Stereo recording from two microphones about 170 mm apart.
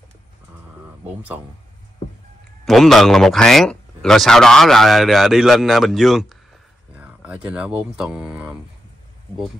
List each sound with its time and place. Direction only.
1.0 s speech: 10° right (ahead or behind)
2.6 s a man's voice: centre (ahead or behind)